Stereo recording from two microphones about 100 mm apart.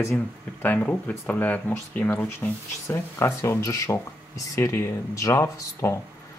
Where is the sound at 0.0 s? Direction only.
20° left (ahead or behind).